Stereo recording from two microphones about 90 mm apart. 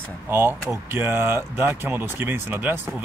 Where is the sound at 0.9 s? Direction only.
25° right (ahead or behind).